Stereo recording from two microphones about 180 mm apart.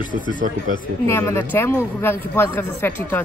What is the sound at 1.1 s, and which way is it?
Speech, 15° left (ahead or behind).